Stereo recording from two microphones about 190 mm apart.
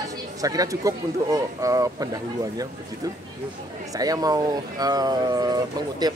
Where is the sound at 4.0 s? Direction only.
20° right (ahead or behind).